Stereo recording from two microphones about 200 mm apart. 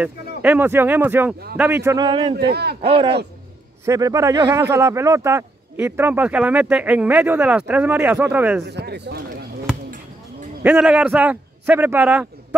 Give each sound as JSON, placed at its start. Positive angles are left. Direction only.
{"t": 0.4, "sound": "speech", "side_deg": -10}
{"t": 2.3, "sound": "speech", "side_deg": -50}
{"t": 2.8, "sound": "speech", "side_deg": -25}
{"t": 3.8, "sound": "speech", "side_deg": -15}
{"t": 8.6, "sound": "speech", "side_deg": -55}
{"t": 10.6, "sound": "speech", "side_deg": -10}